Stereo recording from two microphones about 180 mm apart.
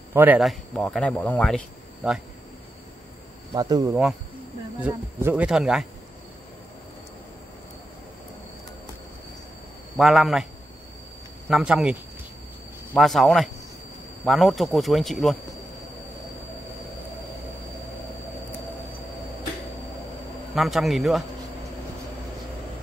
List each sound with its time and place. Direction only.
0.1 s a man's voice: 10° right (ahead or behind)
0.4 s speech: centre (ahead or behind)
2.0 s speech: 5° right (ahead or behind)
3.5 s speech: 20° right (ahead or behind)
4.8 s speech: 10° right (ahead or behind)
9.9 s speech: centre (ahead or behind)
11.4 s speech: 5° right (ahead or behind)
20.5 s speech: centre (ahead or behind)